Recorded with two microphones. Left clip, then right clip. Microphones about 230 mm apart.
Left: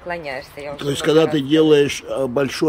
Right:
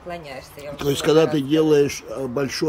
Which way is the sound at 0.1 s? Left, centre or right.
Centre.